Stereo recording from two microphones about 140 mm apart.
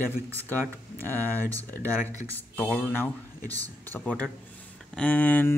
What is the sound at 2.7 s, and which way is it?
Speech, 15° left (ahead or behind).